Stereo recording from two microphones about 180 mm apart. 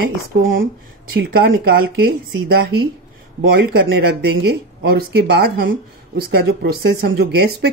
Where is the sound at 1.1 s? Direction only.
60° right (ahead or behind).